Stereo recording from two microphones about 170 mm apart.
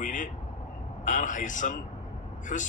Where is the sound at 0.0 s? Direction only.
50° left (ahead or behind).